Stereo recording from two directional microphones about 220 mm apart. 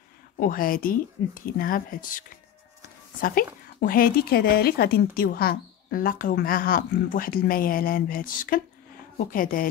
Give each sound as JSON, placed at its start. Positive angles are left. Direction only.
{"t": 0.4, "sound": "speech", "side_deg": 40}